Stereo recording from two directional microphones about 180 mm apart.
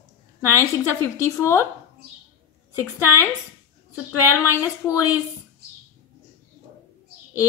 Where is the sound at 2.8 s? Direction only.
15° left (ahead or behind).